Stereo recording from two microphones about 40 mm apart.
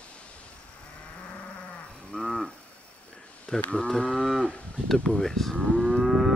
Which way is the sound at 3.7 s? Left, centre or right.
Left.